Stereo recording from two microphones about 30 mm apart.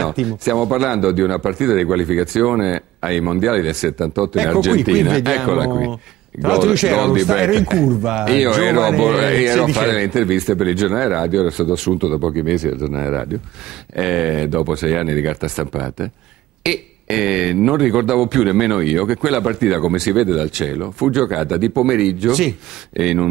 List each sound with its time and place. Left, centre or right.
0.0 s a man's voice: centre